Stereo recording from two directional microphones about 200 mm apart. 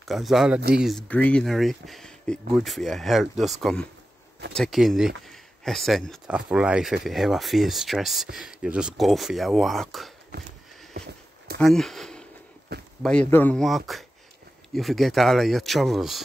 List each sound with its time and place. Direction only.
0.0 s speech: centre (ahead or behind)
11.6 s speech: centre (ahead or behind)
12.7 s a sound: 55° right (ahead or behind)
13.0 s speech: 5° left (ahead or behind)